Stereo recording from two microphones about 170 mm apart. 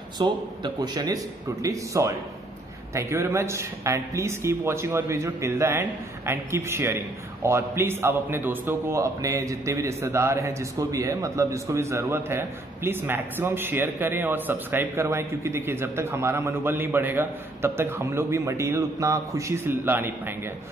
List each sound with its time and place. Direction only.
0.2 s a man's voice: 25° right (ahead or behind)